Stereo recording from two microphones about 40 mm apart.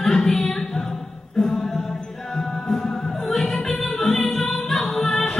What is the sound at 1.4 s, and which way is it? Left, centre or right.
Mantra, centre.